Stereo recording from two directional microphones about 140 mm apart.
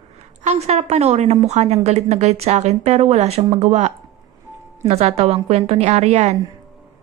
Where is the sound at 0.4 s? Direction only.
50° right (ahead or behind).